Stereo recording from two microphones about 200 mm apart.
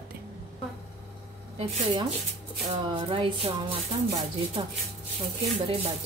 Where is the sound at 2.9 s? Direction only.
25° right (ahead or behind).